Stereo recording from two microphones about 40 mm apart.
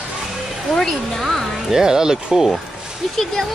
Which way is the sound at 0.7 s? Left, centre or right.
Centre.